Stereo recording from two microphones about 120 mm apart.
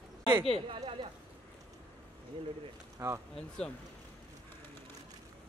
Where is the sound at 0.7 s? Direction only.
45° right (ahead or behind).